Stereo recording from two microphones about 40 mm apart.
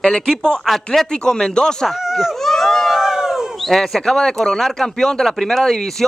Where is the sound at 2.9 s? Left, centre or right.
Centre.